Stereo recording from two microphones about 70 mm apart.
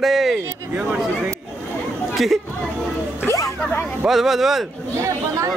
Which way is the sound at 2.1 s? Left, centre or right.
Centre.